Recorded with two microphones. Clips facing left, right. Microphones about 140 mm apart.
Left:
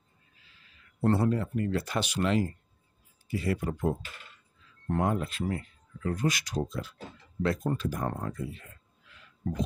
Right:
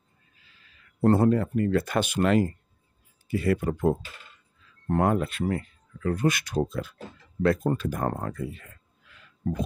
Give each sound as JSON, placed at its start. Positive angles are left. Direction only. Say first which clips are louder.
{"t": 1.0, "sound": "speech", "louder": "right 5 dB", "side_deg": -50}